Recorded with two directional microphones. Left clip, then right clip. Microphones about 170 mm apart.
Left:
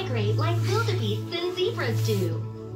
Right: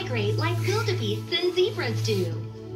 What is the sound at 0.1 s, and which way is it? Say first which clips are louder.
A woman's voice: right 1 dB; 45° right (ahead or behind).